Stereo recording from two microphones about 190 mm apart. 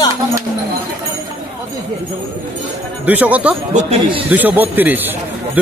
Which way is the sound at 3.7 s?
40° right (ahead or behind).